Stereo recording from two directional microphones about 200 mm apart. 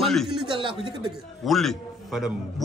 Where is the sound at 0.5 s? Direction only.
25° right (ahead or behind).